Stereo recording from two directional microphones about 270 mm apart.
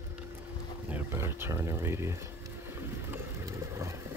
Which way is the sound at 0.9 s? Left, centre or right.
Centre.